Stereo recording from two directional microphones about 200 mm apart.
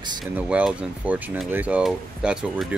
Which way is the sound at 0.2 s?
5° right (ahead or behind).